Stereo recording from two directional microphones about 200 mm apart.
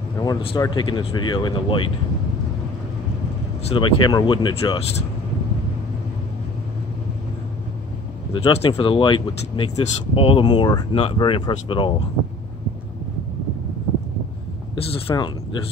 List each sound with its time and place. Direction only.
0.2 s speech: 25° left (ahead or behind)
3.6 s speech: 25° left (ahead or behind)
8.3 s speech: 25° left (ahead or behind)
14.9 s speech: 25° left (ahead or behind)